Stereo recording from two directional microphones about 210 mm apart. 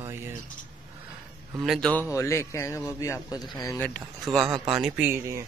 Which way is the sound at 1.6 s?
Centre (ahead or behind).